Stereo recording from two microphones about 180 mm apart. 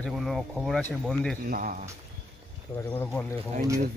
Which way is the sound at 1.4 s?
50° right (ahead or behind).